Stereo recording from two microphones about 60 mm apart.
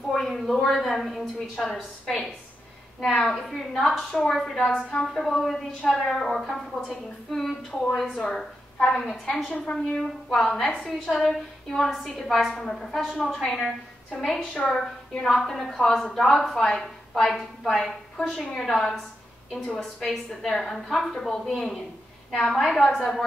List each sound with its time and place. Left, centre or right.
0.1 s a woman's voice: centre
9.5 s a woman's voice: centre
10.3 s a woman's voice: centre
10.8 s a woman's voice: centre